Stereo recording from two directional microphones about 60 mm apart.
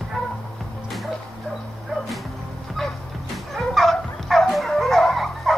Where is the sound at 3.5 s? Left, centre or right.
Centre.